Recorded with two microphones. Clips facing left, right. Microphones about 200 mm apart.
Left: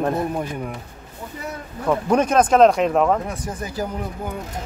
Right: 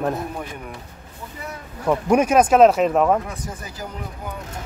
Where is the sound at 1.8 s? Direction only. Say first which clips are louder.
Right 1 dB; 10° right (ahead or behind).